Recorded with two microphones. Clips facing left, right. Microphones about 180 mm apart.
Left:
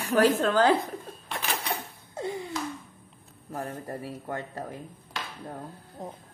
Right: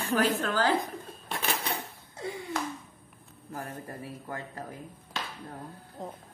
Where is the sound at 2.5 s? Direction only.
55° right (ahead or behind).